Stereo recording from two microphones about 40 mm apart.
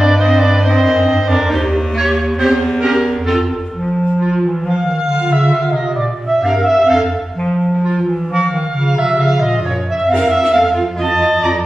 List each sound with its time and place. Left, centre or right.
0.0 s music: centre
2.0 s clarinet: centre
5.3 s music: centre
7.8 s clarinet: centre
9.1 s music: centre